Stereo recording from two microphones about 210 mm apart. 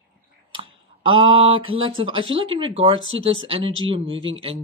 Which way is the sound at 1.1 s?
75° right (ahead or behind).